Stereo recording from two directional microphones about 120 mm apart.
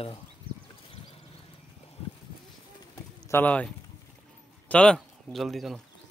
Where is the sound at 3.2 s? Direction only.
15° left (ahead or behind); by 5.7 s centre (ahead or behind).